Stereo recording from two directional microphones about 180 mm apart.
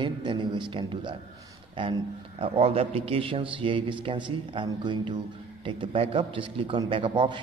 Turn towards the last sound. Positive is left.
turn(degrees=-30)  # may be behind; listen again after turning